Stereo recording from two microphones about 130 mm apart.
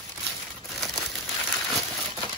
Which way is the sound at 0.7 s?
Centre (ahead or behind).